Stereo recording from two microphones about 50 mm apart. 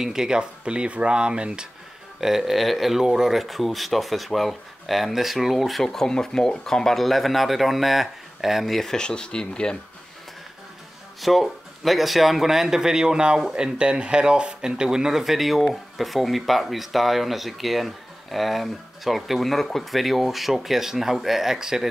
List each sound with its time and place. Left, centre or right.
0.0 s speech: centre
2.1 s speech: centre
11.1 s speech: centre